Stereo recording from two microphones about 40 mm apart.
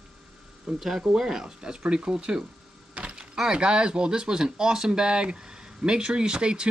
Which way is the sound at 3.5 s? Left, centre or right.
Right.